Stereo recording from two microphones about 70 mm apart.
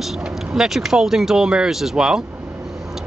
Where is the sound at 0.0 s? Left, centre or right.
Centre.